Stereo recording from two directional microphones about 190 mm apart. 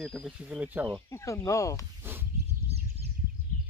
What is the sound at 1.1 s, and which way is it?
Speech, 15° left (ahead or behind).